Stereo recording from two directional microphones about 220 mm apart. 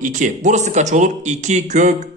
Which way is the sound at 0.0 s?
35° right (ahead or behind).